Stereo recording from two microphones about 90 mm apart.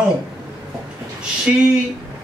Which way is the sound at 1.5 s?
10° right (ahead or behind).